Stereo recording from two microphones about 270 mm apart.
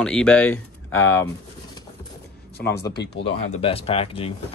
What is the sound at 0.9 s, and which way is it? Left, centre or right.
Speech, left.